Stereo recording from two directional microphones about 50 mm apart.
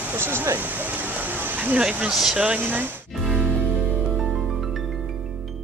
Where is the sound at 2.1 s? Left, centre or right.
Centre.